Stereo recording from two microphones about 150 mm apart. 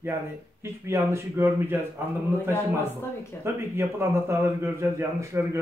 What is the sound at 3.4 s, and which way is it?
Speech, 15° right (ahead or behind).